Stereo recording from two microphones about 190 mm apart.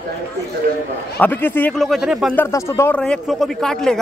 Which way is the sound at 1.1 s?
10° left (ahead or behind).